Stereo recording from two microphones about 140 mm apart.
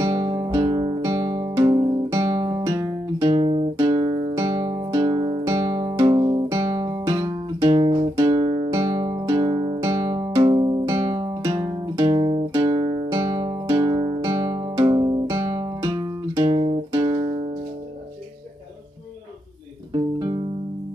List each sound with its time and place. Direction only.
0.0 s music: 25° right (ahead or behind)
3.3 s music: 45° right (ahead or behind)
3.7 s music: 30° right (ahead or behind)
6.1 s guitar: 30° right (ahead or behind)
7.7 s guitar: 45° right (ahead or behind)
8.8 s music: 45° right (ahead or behind)
9.2 s music: 30° right (ahead or behind)
12.6 s music: 30° right (ahead or behind)
16.5 s music: 45° right (ahead or behind)
16.9 s music: 25° right (ahead or behind)
19.9 s music: 30° right (ahead or behind)